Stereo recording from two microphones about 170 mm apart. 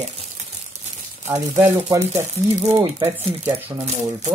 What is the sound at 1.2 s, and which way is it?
Speech, 15° right (ahead or behind).